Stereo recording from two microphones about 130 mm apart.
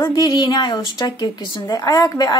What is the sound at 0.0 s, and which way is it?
A woman's voice, 30° left (ahead or behind).